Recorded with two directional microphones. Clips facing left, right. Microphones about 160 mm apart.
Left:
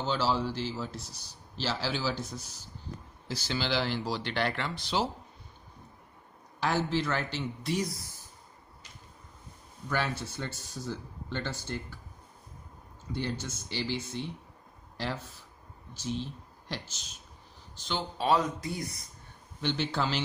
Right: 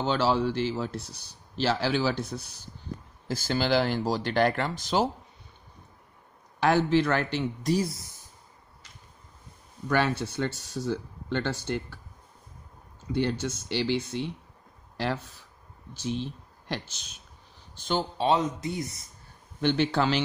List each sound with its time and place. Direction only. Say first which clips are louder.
0.0 s speech: right 5 dB; 60° right (ahead or behind)
3.3 s speech: right 6 dB; 50° right (ahead or behind)
6.6 s speech: right 7 dB; 60° right (ahead or behind)
7.7 s speech: right 4 dB; 25° right (ahead or behind)
9.8 s speech: right 6 dB; 65° right (ahead or behind)
13.1 s speech: right 7 dB; 65° right (ahead or behind)
16.6 s speech: right 5 dB; 65° right (ahead or behind)
17.7 s speech: right 6 dB; 50° right (ahead or behind)
18.1 s speech: even; 25° right (ahead or behind)
19.6 s speech: right 6 dB; 55° right (ahead or behind)